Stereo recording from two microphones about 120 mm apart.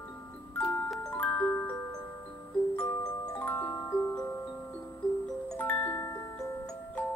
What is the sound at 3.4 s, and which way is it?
Music, 15° left (ahead or behind).